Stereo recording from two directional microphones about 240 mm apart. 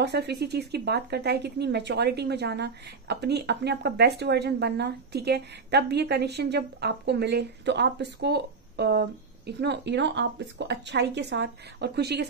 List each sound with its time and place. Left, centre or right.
0.0 s speech: right